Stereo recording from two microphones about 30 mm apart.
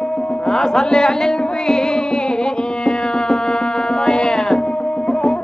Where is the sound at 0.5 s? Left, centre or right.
Centre.